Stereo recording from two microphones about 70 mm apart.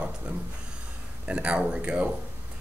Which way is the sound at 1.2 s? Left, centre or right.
Centre.